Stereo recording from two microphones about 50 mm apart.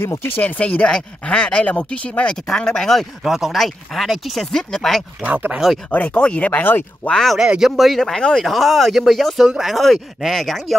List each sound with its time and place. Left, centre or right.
0.4 s speech: left
0.8 s speech: centre
3.3 s speech: centre
4.5 s speech: centre
5.2 s speech: right
5.9 s speech: left
7.3 s speech: centre
7.7 s speech: centre
8.0 s speech: centre
8.5 s speech: centre